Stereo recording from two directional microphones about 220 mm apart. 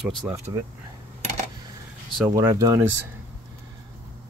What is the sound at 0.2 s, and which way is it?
Speech, 5° right (ahead or behind).